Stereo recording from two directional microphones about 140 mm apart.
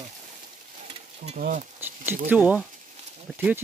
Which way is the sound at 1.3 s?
65° right (ahead or behind).